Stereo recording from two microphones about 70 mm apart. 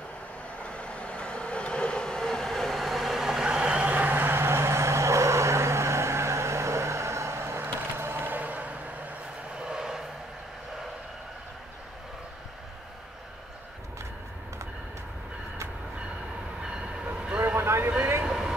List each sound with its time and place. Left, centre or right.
0.7 s train: centre; by 8.7 s right
9.6 s vehicle: centre
16.7 s train: centre
17.6 s vehicle: right
18.2 s vehicle: centre